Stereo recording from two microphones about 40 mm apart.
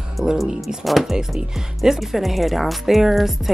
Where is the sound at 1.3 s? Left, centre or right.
Centre.